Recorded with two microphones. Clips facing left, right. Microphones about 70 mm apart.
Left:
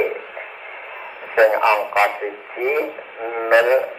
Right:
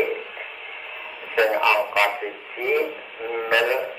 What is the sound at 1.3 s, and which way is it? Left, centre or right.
A man's voice, left.